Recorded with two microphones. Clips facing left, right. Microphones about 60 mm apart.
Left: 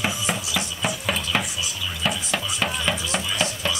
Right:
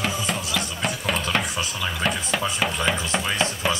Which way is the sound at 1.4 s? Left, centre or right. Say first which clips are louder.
Right 3 dB; right.